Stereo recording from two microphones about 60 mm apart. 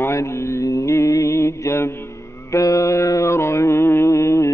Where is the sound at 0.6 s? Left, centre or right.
Left.